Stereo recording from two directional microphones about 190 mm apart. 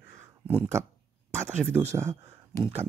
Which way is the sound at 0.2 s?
10° right (ahead or behind).